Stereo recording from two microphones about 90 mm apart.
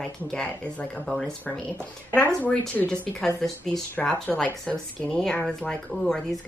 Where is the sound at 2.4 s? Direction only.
15° left (ahead or behind).